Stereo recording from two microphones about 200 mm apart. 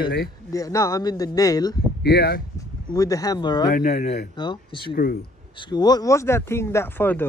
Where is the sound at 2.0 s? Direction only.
55° left (ahead or behind).